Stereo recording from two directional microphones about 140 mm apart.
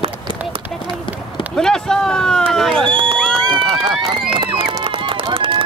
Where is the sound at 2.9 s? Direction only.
40° right (ahead or behind).